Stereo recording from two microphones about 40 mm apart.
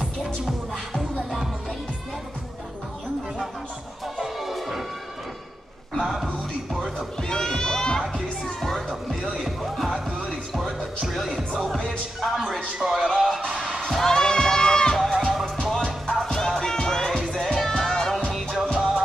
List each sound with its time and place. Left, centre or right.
0.0 s music: centre
4.2 s music: centre
6.0 s music: centre
7.2 s a sound: centre
8.5 s music: centre
13.5 s music: centre
13.7 s music: centre
15.1 s music: centre
17.1 s music: centre
18.5 s music: centre